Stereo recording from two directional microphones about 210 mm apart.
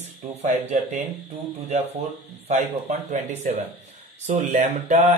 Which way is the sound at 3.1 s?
30° right (ahead or behind).